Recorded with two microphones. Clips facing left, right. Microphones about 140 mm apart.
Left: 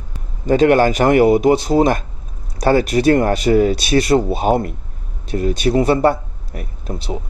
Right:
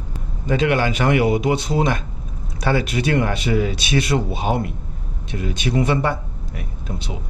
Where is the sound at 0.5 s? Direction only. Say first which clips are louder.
Left 7 dB; 40° left (ahead or behind).